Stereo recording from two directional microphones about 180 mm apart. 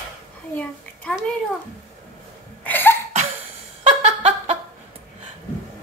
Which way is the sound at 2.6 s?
10° left (ahead or behind).